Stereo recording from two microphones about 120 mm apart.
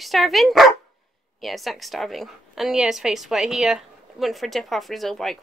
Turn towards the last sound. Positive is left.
turn(degrees=0)  # may be behind; listen again after turning